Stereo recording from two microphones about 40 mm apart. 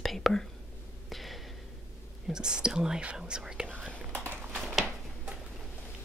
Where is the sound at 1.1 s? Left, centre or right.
Centre.